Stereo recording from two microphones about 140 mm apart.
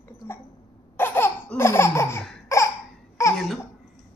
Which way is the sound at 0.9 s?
15° left (ahead or behind).